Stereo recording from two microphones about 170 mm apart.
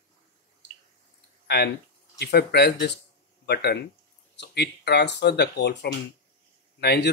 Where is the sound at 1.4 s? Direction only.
75° left (ahead or behind).